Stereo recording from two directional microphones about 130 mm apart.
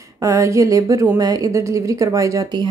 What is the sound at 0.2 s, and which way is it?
Speech, 25° right (ahead or behind).